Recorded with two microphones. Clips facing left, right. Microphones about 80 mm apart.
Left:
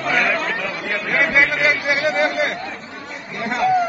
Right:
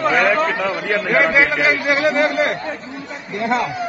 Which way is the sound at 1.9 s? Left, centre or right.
Right.